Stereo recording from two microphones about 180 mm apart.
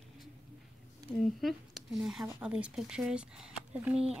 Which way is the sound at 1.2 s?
Centre (ahead or behind).